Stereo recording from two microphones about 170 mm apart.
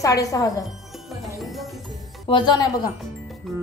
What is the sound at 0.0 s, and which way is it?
Speech, 20° left (ahead or behind).